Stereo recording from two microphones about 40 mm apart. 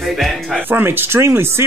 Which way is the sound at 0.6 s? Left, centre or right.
Right.